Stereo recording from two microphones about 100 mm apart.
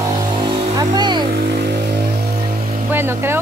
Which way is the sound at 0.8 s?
45° right (ahead or behind).